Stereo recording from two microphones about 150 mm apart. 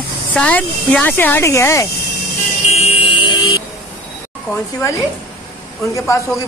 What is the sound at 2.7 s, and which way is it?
Vehicle, 45° left (ahead or behind).